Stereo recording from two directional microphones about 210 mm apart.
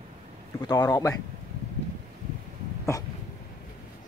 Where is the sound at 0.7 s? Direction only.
15° left (ahead or behind).